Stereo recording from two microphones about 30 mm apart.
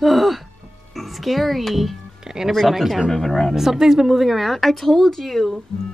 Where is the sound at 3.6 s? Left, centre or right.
Centre.